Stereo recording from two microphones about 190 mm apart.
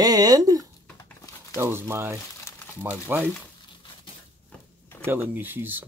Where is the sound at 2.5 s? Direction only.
15° left (ahead or behind).